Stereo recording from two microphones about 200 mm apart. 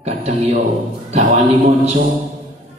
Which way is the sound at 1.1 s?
35° right (ahead or behind).